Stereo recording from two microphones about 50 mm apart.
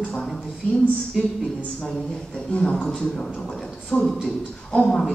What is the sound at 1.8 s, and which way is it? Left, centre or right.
A man's voice, centre.